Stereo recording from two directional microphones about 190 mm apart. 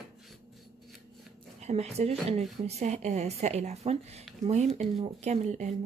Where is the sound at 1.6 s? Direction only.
35° right (ahead or behind).